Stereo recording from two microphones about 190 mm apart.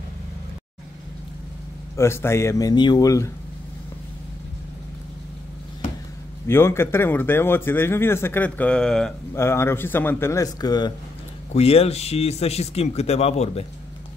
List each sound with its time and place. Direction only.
2.0 s speech: 15° left (ahead or behind)
6.4 s speech: 15° left (ahead or behind)
9.4 s speech: 15° left (ahead or behind)
11.5 s speech: 30° left (ahead or behind)